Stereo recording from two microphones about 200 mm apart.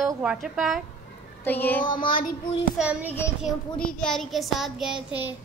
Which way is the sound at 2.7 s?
5° right (ahead or behind).